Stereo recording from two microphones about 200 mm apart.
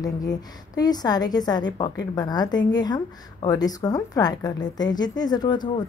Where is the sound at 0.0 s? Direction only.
20° left (ahead or behind).